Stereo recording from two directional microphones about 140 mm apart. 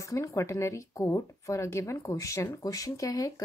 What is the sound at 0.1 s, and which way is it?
Speech, 20° left (ahead or behind).